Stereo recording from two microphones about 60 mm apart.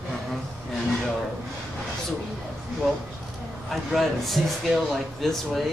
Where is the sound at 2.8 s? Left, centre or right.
Centre.